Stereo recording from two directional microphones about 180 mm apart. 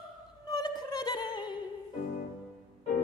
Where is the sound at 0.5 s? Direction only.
25° left (ahead or behind).